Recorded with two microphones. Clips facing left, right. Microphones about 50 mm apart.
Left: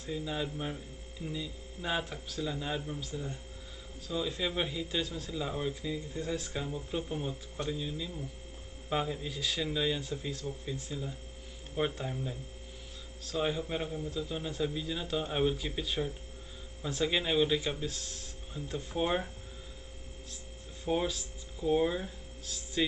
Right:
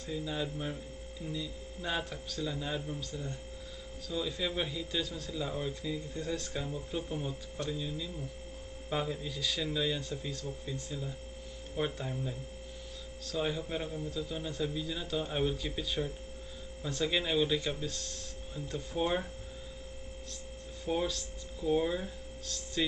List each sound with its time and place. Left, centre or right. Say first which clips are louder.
0.0 s speech: left 1 dB; centre
11.8 s speech: left 2 dB; left
12.1 s speech: even; centre
20.8 s speech: left 1 dB; centre